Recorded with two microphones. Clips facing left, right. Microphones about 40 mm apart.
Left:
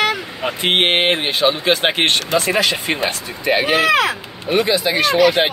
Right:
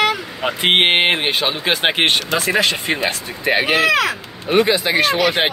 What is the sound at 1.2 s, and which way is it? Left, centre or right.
Speech, right.